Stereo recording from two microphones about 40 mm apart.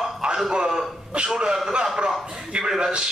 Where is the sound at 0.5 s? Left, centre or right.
Centre.